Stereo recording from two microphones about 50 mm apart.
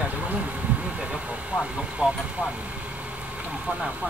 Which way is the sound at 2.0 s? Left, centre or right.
Right.